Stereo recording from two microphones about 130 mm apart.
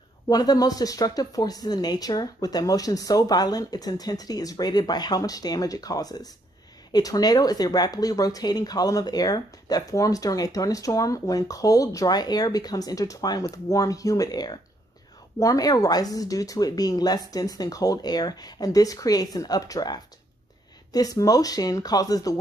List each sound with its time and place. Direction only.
0.3 s speech: 30° left (ahead or behind)